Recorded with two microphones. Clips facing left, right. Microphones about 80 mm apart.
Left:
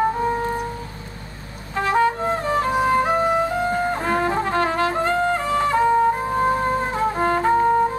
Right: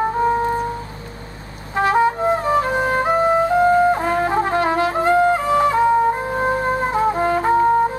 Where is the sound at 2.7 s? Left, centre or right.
Right.